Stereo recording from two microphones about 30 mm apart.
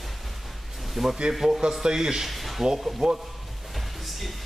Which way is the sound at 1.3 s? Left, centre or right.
Centre.